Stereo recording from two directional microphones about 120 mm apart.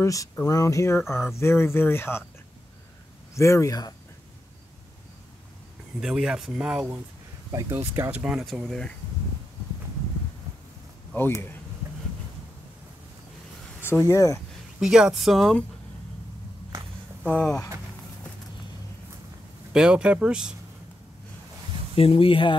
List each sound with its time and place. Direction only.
0.0 s speech: 25° left (ahead or behind)
3.3 s speech: 25° left (ahead or behind)
5.9 s speech: 5° right (ahead or behind)
7.7 s speech: 20° right (ahead or behind); by 8.9 s 5° left (ahead or behind)
13.7 s speech: 20° left (ahead or behind)
14.8 s speech: 5° right (ahead or behind)
17.3 s speech: 10° left (ahead or behind)
19.7 s speech: 10° right (ahead or behind)
21.9 s speech: 50° left (ahead or behind)